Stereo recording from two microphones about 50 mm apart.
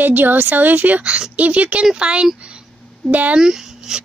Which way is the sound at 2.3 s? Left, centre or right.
Right.